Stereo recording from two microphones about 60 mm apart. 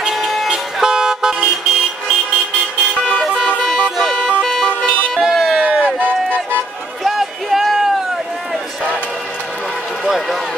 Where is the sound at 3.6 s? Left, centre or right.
Centre.